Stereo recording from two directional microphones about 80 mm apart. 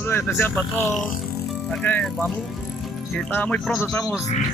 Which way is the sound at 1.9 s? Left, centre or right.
Left.